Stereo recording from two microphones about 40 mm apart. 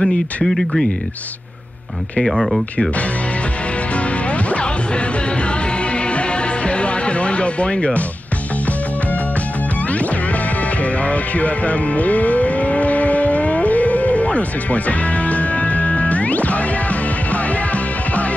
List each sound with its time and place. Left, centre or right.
0.0 s speech: centre
2.1 s speech: centre
3.9 s music: left
5.9 s music: left
10.8 s music: left